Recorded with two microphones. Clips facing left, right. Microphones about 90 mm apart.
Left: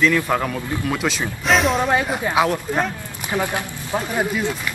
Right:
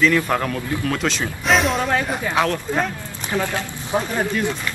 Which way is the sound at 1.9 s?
10° left (ahead or behind).